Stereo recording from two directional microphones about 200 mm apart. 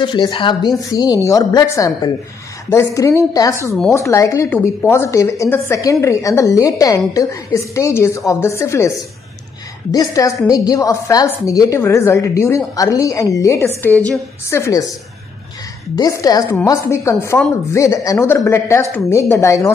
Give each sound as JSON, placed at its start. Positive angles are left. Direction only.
{"t": 0.0, "sound": "a woman's voice", "side_deg": 25}
{"t": 16.0, "sound": "a woman's voice", "side_deg": 15}